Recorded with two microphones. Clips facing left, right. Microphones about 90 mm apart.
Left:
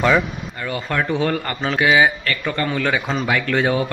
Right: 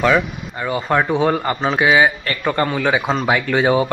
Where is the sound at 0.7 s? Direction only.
20° right (ahead or behind).